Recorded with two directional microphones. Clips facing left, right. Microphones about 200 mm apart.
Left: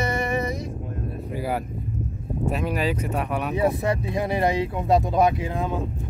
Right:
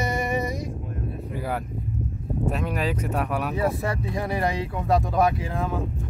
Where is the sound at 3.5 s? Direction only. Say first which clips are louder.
Left 3 dB; 20° left (ahead or behind).